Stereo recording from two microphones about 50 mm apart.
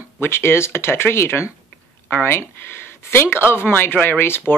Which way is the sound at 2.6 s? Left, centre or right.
Left.